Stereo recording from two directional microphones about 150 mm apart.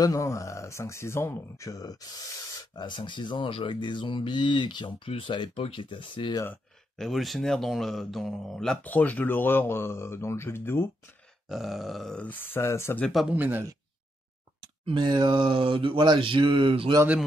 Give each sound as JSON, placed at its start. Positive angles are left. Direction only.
{"t": 0.0, "sound": "a man's voice", "side_deg": 20}
{"t": 7.0, "sound": "speech", "side_deg": 0}
{"t": 11.4, "sound": "grunt", "side_deg": 0}
{"t": 12.5, "sound": "speech", "side_deg": 15}
{"t": 13.1, "sound": "speech", "side_deg": -5}
{"t": 14.6, "sound": "a sound", "side_deg": -30}